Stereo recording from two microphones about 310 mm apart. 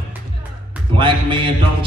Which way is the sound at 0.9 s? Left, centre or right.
Centre.